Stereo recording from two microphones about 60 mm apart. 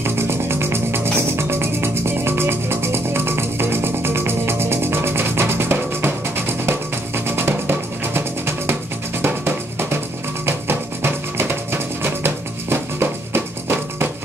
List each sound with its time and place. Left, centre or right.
0.0 s music: right